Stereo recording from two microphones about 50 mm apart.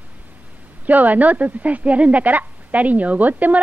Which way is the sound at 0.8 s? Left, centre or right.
Right.